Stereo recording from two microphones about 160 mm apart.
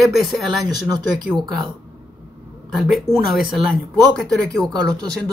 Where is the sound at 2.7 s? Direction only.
Centre (ahead or behind).